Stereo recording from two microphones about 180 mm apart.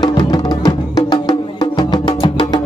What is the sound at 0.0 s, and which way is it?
Music, 20° left (ahead or behind).